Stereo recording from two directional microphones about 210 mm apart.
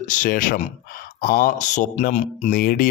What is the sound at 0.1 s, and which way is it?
Speech, 40° left (ahead or behind).